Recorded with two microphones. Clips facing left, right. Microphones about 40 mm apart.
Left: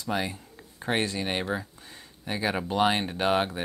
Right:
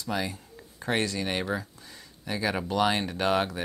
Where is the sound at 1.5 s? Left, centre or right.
Left.